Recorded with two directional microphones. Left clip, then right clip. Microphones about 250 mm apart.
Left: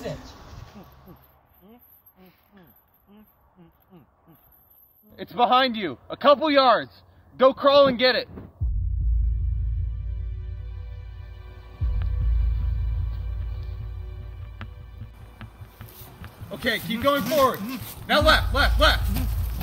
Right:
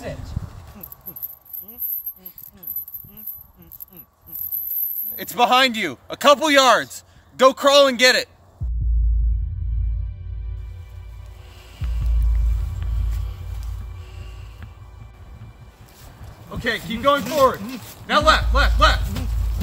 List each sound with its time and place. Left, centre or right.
1.7 s a sound: centre
5.1 s speech: centre
16.4 s a man's voice: left